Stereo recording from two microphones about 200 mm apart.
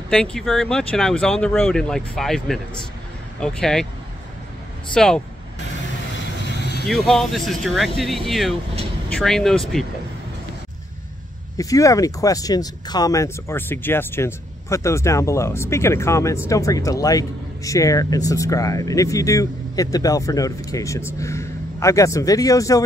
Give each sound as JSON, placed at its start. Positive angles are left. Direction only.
{"t": 0.1, "sound": "speech", "side_deg": 5}
{"t": 4.9, "sound": "speech", "side_deg": 5}
{"t": 6.9, "sound": "speech", "side_deg": 0}
{"t": 11.5, "sound": "speech", "side_deg": 15}